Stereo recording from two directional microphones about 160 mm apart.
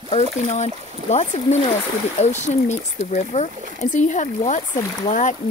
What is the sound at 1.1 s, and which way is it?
Speech, 45° left (ahead or behind).